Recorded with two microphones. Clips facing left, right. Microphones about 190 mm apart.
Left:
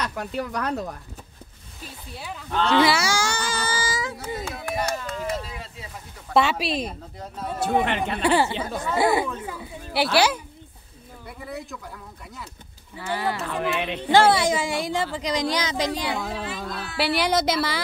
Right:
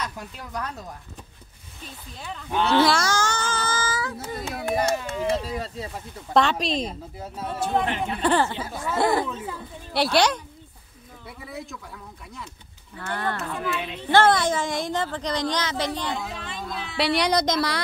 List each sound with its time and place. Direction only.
0.0 s speech: 75° left (ahead or behind)
2.1 s speech: 5° left (ahead or behind)
2.5 s speech: 10° right (ahead or behind)
2.8 s baby cry: 5° left (ahead or behind)
5.0 s a sound: 25° right (ahead or behind)
5.5 s speech: 40° right (ahead or behind)
6.3 s speech: 5° left (ahead or behind)
7.8 s speech: 75° left (ahead or behind)
8.2 s speech: 10° left (ahead or behind)
12.9 s speech: 5° left (ahead or behind)
13.5 s speech: 70° left (ahead or behind)
13.9 s speech: 10° left (ahead or behind)